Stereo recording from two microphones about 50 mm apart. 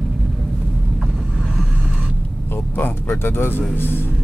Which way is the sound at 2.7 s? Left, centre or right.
Left.